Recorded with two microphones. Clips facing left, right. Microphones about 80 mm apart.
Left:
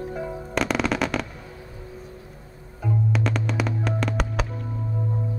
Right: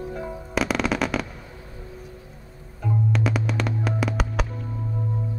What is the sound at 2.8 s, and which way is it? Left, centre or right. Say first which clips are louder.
Music: right 1 dB; centre.